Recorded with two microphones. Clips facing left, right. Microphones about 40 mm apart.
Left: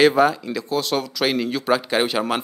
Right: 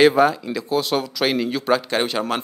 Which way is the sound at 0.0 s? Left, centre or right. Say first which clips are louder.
Right 1 dB; centre.